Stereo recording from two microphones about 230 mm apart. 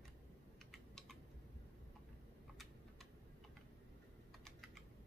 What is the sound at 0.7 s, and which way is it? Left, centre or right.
Typing, centre.